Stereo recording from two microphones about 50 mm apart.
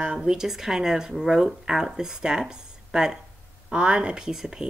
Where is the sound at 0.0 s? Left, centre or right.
Centre.